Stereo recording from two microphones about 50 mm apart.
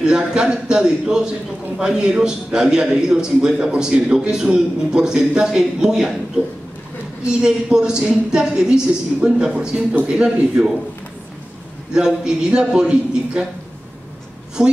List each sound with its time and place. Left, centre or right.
0.0 s a man's voice: centre
11.9 s a man's voice: centre